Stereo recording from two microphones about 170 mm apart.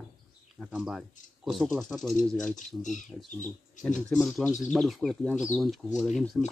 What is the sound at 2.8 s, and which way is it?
Speech, 45° left (ahead or behind).